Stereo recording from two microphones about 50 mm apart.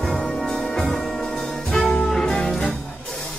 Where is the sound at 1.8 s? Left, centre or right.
Left.